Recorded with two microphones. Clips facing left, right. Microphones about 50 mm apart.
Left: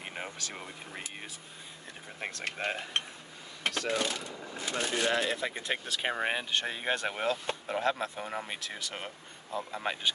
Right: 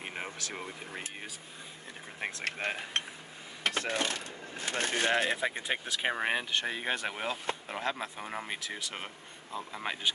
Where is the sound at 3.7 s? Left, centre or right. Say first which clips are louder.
Left 1 dB; right.